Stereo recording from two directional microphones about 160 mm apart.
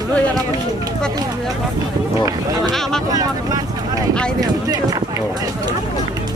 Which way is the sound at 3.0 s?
25° right (ahead or behind).